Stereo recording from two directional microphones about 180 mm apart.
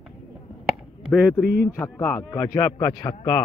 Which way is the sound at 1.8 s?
10° left (ahead or behind).